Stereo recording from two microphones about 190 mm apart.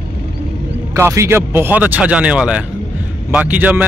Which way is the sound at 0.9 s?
15° right (ahead or behind).